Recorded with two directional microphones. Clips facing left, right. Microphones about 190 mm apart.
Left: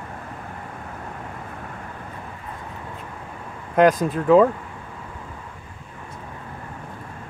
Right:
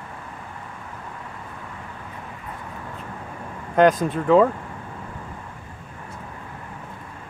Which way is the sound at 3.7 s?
5° left (ahead or behind).